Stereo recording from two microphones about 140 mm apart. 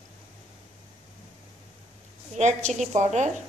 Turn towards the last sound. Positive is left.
turn(degrees=-55)  # may be behind; listen again after turning